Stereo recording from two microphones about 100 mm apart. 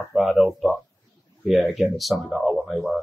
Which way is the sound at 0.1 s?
Centre (ahead or behind).